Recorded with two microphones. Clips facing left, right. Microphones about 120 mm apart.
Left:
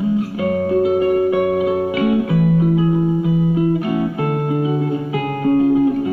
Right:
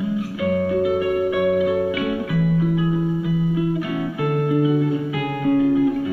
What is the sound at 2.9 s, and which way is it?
Music, 45° left (ahead or behind).